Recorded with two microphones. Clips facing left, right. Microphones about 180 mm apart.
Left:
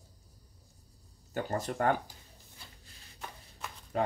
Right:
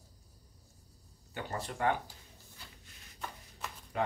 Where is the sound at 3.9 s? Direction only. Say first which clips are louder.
Left 3 dB; 35° left (ahead or behind).